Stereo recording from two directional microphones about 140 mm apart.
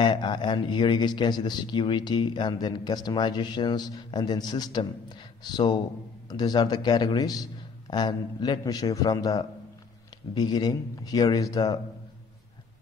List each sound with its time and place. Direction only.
0.0 s a man's voice: 35° left (ahead or behind)